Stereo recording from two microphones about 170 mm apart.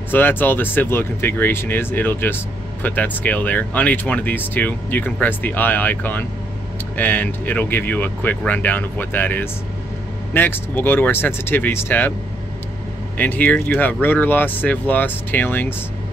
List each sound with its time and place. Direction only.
0.1 s speech: 10° left (ahead or behind)
13.2 s speech: 10° left (ahead or behind)